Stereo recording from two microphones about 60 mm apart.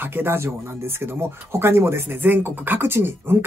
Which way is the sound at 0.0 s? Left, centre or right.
Right.